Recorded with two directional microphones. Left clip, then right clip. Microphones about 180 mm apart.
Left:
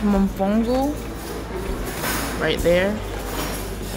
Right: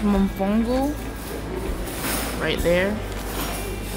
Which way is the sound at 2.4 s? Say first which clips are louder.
Left 2 dB; centre (ahead or behind).